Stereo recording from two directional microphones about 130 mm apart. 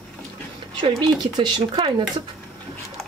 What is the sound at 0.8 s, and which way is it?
Speech, 35° right (ahead or behind).